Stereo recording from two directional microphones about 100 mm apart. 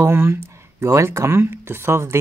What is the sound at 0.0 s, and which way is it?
Speech, 25° right (ahead or behind).